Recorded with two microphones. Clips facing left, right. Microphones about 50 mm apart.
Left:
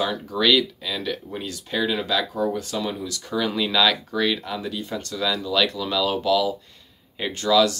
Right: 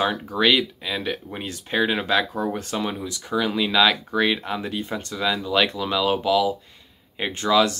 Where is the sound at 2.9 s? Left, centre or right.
Right.